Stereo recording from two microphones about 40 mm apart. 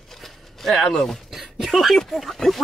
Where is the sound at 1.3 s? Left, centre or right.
Centre.